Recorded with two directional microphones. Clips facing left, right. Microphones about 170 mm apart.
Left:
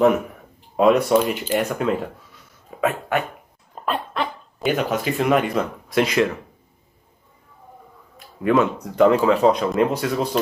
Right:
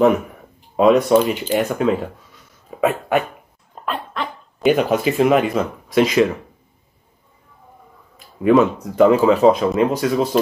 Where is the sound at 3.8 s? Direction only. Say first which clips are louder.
Left 1 dB; 10° left (ahead or behind).